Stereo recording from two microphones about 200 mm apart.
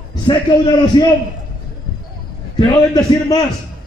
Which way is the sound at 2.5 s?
20° left (ahead or behind).